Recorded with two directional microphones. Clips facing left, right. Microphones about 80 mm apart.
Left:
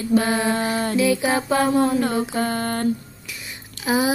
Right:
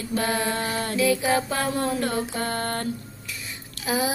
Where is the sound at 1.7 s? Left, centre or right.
Centre.